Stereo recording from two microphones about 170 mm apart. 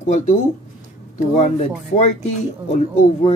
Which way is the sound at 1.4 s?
45° left (ahead or behind).